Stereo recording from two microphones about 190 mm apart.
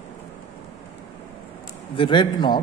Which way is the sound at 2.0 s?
25° left (ahead or behind).